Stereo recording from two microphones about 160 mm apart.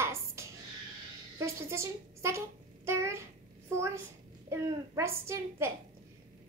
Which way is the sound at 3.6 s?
15° right (ahead or behind).